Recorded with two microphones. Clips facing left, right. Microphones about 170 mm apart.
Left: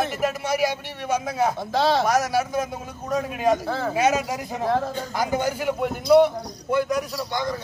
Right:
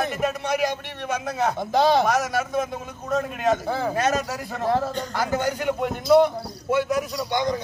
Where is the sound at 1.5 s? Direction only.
20° right (ahead or behind).